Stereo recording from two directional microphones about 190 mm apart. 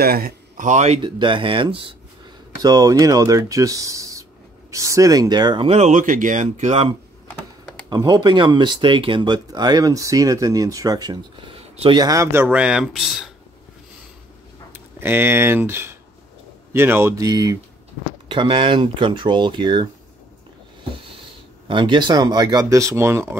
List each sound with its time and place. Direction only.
0.0 s speech: 50° right (ahead or behind); by 6.9 s 35° right (ahead or behind)
7.9 s speech: 20° right (ahead or behind); by 13.2 s centre (ahead or behind)
14.7 s speech: 10° right (ahead or behind)
21.6 s speech: 25° right (ahead or behind)